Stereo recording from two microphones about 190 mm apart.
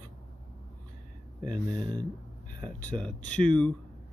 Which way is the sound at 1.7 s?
20° right (ahead or behind).